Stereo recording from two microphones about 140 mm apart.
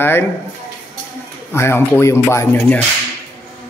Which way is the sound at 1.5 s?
20° left (ahead or behind).